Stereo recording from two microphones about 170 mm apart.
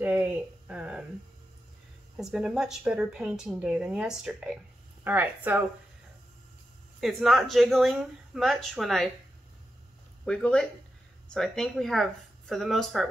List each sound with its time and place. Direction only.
0.0 s a sound: 10° right (ahead or behind)
2.1 s a woman's voice: 5° right (ahead or behind)
7.0 s a woman's voice: centre (ahead or behind)
10.2 s a woman's voice: 5° left (ahead or behind)